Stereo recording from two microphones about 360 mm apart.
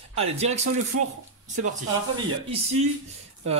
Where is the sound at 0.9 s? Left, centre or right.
Right.